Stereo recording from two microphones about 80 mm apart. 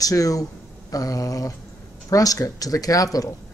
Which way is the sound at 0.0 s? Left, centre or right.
Left.